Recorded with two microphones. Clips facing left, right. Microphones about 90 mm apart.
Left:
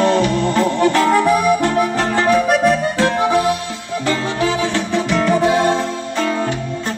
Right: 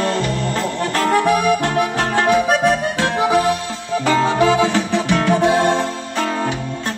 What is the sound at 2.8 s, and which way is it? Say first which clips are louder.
Music: left 2 dB; 5° right (ahead or behind).